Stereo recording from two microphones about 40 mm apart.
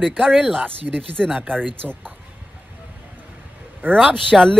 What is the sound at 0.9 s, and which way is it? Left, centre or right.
Speech, right.